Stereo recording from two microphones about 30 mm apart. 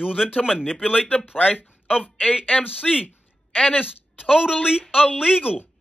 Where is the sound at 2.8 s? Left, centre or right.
Centre.